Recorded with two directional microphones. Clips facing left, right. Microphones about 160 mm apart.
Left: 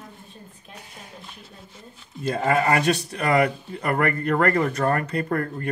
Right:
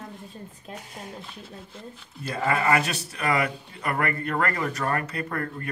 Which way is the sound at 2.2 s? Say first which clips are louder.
Left 4 dB; 40° left (ahead or behind).